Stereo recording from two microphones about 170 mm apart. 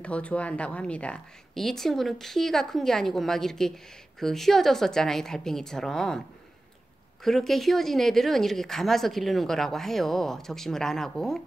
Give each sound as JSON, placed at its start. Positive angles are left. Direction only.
{"t": 0.0, "sound": "speech", "side_deg": 5}
{"t": 7.2, "sound": "speech", "side_deg": 0}